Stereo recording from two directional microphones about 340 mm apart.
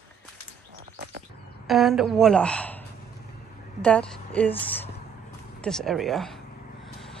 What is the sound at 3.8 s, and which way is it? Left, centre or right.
Speech, centre.